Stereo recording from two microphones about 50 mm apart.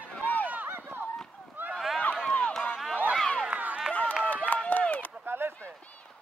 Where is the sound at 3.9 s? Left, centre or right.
Left.